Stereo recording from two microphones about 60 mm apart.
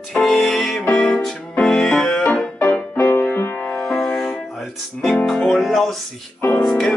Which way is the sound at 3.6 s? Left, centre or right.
Centre.